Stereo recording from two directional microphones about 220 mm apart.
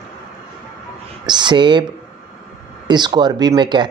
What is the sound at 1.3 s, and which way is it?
Speech, 20° right (ahead or behind).